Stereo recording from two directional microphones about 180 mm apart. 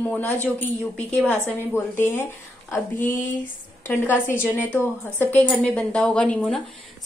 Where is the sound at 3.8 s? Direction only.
10° left (ahead or behind).